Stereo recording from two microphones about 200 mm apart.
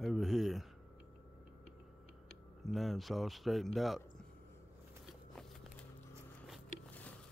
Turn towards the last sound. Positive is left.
turn(degrees=5)  # may be behind; listen again after turning